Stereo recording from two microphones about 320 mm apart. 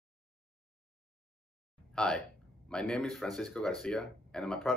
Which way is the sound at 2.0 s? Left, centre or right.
Centre.